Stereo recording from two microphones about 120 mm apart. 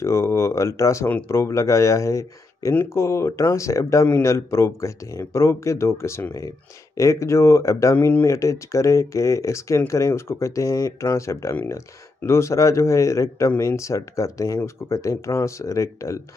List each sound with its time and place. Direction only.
0.0 s speech: 25° left (ahead or behind)